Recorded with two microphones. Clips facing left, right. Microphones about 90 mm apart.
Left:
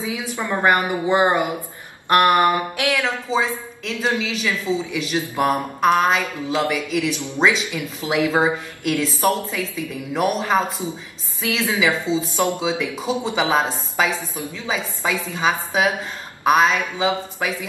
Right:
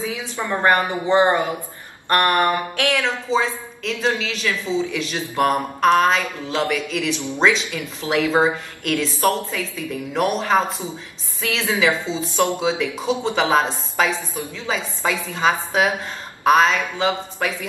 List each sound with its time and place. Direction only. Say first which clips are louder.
0.0 s a woman's voice: even; 15° left (ahead or behind)
11.8 s a woman's voice: left 1 dB; 5° left (ahead or behind)